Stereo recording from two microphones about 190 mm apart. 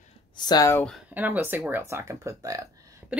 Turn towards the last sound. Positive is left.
turn(degrees=-15)  # may be behind; listen again after turning